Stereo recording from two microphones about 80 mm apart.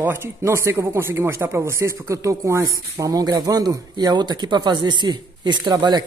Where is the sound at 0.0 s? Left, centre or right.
Right.